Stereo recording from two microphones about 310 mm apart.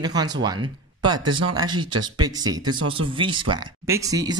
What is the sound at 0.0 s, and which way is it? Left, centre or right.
Speech, centre.